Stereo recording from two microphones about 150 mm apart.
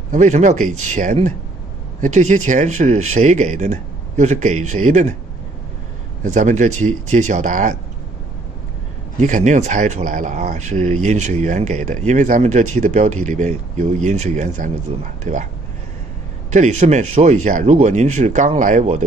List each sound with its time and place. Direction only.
0.1 s speech: 55° right (ahead or behind)
6.2 s speech: 55° right (ahead or behind)
9.2 s speech: 55° right (ahead or behind)
14.9 s speech: 40° right (ahead or behind)
15.3 s speech: 55° right (ahead or behind)
16.4 s speech: 50° right (ahead or behind)